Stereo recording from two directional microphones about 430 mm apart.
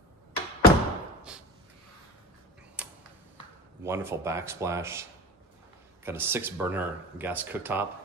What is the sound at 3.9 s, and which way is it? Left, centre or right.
Speech, centre.